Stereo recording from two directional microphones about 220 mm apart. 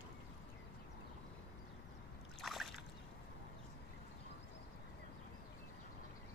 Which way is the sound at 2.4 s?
Centre (ahead or behind).